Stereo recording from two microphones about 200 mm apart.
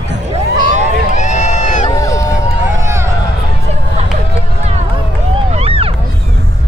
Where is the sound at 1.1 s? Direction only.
35° left (ahead or behind).